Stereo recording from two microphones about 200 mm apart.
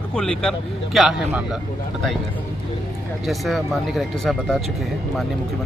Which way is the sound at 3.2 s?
Centre (ahead or behind).